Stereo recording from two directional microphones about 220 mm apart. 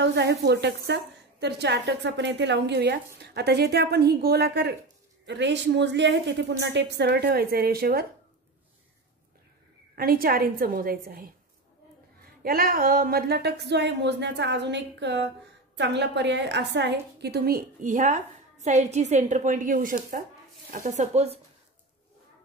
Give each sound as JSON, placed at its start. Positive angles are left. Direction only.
{"t": 0.0, "sound": "a woman's voice", "side_deg": -50}
{"t": 9.9, "sound": "a woman's voice", "side_deg": -40}
{"t": 12.4, "sound": "a woman's voice", "side_deg": -40}